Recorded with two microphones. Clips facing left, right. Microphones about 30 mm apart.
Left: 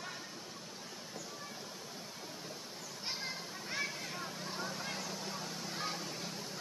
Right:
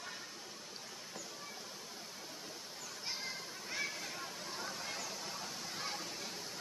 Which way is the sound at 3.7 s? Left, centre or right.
Centre.